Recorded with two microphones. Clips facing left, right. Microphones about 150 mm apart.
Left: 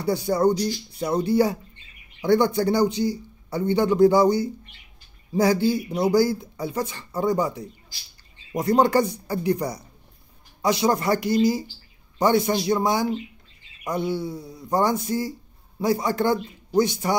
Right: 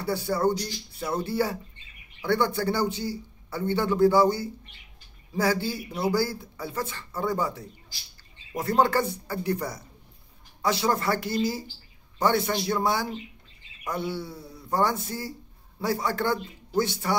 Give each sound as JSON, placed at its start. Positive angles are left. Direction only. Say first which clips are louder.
{"t": 0.0, "sound": "a man's voice", "louder": "left 4 dB", "side_deg": 15}